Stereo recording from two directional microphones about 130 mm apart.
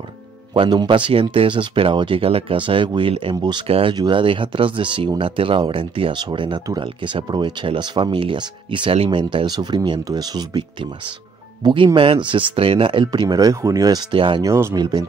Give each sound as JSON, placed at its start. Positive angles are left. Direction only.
{"t": 0.6, "sound": "speech", "side_deg": -35}
{"t": 9.3, "sound": "speech", "side_deg": -35}
{"t": 14.1, "sound": "speech", "side_deg": -40}
{"t": 14.4, "sound": "speech", "side_deg": -20}